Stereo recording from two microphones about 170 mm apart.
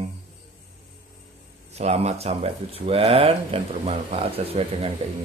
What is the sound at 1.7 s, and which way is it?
Speech, 40° right (ahead or behind).